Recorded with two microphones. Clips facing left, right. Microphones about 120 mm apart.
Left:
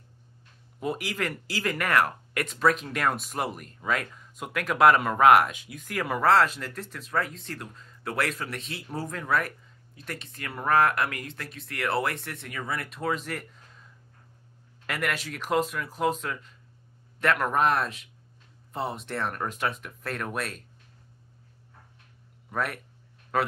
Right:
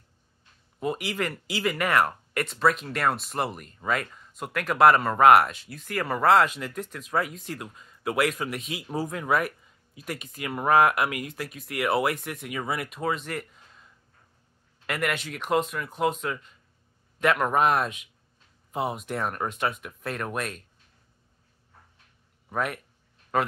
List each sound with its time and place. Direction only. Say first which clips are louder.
0.7 s speech: right 2 dB; centre (ahead or behind)
12.5 s speech: right 3 dB; 15° right (ahead or behind)
12.8 s speech: right 1 dB; centre (ahead or behind)
14.9 s speech: right 2 dB; centre (ahead or behind)
22.5 s speech: right 2 dB; 5° right (ahead or behind)